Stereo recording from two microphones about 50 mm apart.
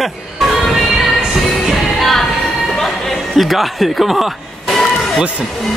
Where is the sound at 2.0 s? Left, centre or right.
Centre.